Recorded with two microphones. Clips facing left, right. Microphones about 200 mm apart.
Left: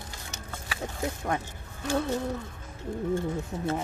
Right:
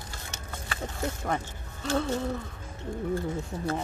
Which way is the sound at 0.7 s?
5° left (ahead or behind).